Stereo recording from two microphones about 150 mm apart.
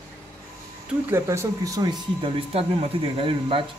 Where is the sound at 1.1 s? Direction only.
20° right (ahead or behind).